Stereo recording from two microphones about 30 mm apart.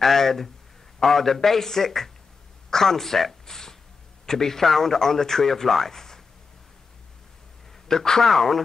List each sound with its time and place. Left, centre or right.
0.0 s a man's voice: centre
7.9 s a man's voice: centre